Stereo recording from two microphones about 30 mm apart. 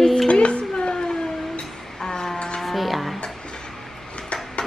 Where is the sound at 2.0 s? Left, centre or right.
Centre.